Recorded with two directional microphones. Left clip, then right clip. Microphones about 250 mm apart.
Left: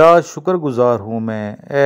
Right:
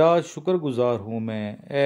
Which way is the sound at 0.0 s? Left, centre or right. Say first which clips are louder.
Left 9 dB; left.